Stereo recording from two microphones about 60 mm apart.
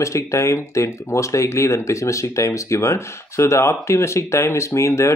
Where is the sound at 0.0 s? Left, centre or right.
Left.